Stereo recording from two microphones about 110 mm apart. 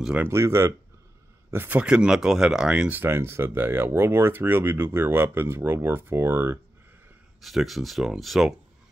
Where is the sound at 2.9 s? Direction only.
20° right (ahead or behind).